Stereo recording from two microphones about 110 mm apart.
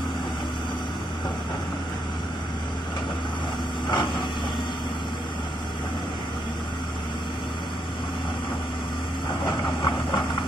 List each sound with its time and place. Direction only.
3.9 s vehicle: 45° left (ahead or behind)
9.8 s vehicle: 40° left (ahead or behind)